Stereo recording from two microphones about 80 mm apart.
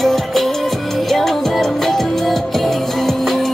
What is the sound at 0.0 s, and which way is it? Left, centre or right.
Music, centre.